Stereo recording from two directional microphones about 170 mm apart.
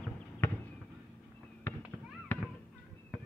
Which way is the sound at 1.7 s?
10° left (ahead or behind).